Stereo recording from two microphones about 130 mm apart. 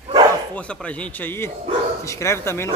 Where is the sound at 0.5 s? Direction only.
10° left (ahead or behind).